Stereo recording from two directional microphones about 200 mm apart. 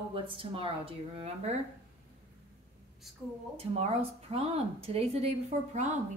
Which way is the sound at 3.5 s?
30° right (ahead or behind).